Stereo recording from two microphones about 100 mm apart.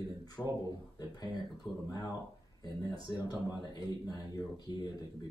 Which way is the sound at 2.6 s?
40° left (ahead or behind).